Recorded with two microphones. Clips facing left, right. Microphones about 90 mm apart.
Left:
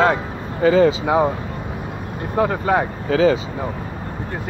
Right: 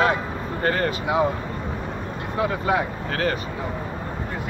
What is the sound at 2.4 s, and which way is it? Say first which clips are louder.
Speech: left 5 dB; 40° left (ahead or behind).